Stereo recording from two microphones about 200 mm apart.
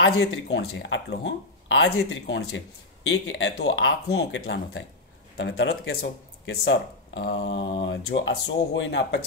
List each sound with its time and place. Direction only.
0.0 s speech: 60° left (ahead or behind)
2.4 s speech: 85° left; by 4.8 s 65° left (ahead or behind)
5.4 s speech: 55° left (ahead or behind)